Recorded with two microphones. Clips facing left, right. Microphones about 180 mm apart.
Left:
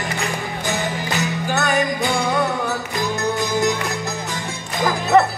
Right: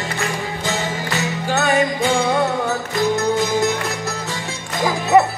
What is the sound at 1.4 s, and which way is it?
Music, 20° right (ahead or behind).